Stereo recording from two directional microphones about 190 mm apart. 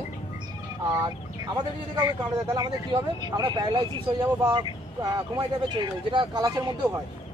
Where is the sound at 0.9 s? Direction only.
20° right (ahead or behind).